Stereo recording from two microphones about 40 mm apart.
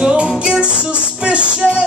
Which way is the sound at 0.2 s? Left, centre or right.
Right.